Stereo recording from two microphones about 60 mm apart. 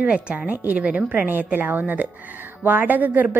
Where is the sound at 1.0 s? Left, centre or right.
Right.